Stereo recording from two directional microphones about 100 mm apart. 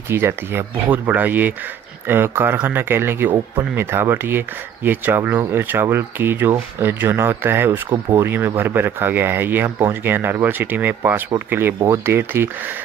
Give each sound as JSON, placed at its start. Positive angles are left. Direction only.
{"t": 0.1, "sound": "speech", "side_deg": -25}